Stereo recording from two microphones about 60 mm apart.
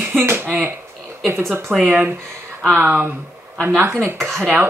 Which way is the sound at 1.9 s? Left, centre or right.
Right.